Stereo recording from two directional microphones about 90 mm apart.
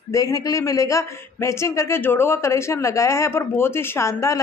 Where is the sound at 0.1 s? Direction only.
40° left (ahead or behind).